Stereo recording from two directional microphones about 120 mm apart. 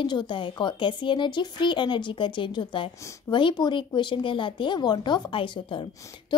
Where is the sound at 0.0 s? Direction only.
40° left (ahead or behind).